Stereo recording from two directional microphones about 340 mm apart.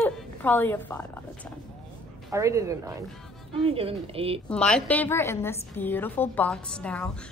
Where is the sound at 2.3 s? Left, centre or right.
Centre.